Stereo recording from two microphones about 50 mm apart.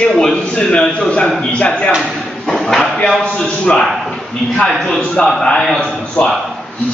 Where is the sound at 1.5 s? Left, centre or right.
Left.